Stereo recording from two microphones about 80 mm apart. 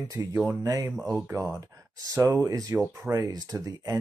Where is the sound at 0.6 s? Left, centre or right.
Right.